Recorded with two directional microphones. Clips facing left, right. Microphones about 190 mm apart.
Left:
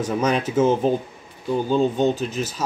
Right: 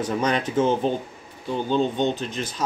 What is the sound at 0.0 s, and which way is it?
Speech, 10° left (ahead or behind).